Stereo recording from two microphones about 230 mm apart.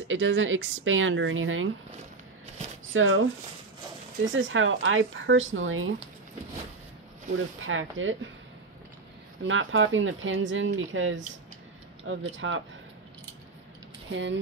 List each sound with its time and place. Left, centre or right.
0.1 s speech: right
2.9 s speech: right
7.6 s speech: right
9.4 s speech: right
12.3 s speech: right
14.1 s speech: right